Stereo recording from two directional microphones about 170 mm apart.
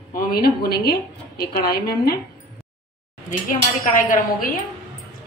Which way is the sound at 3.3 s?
50° left (ahead or behind).